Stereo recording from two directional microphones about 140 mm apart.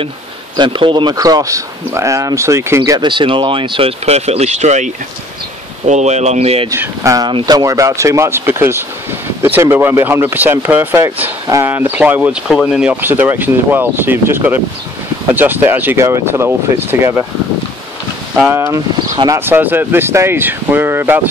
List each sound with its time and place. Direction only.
0.6 s speech: 35° right (ahead or behind)
6.7 s speech: 20° right (ahead or behind)
18.5 s speech: 20° right (ahead or behind)